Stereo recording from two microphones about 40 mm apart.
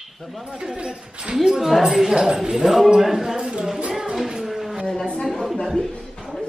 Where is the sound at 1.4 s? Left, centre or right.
Centre.